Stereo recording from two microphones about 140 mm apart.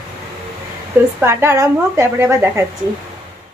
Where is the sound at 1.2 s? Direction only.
20° right (ahead or behind).